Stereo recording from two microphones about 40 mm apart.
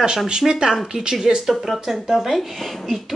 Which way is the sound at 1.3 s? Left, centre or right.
Centre.